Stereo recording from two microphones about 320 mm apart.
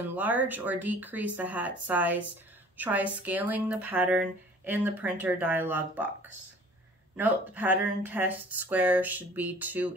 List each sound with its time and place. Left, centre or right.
0.1 s speech: centre
7.2 s speech: centre